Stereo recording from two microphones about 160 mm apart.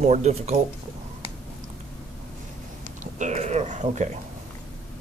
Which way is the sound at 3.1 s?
50° right (ahead or behind).